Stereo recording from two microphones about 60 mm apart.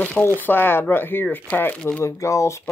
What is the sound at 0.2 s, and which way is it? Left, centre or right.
Speech, left.